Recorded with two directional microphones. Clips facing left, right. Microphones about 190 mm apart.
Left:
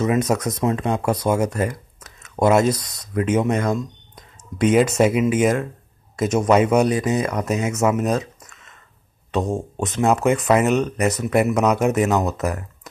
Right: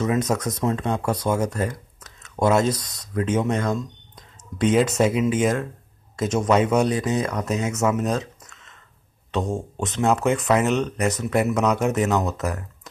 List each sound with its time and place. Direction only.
0.0 s speech: 15° left (ahead or behind)
10.0 s speech: 5° left (ahead or behind)